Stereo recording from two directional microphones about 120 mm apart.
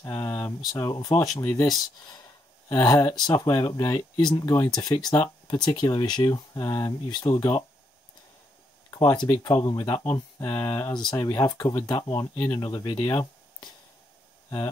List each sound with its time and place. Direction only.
0.0 s speech: 20° left (ahead or behind)
8.9 s speech: 40° left (ahead or behind)
10.9 s speech: 35° left (ahead or behind)